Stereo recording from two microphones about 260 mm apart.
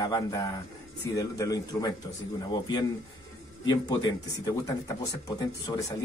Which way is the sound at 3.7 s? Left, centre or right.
Centre.